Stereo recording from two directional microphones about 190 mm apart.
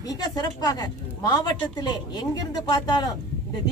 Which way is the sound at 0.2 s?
20° left (ahead or behind).